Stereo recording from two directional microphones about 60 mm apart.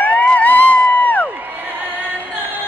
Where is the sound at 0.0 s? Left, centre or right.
Left.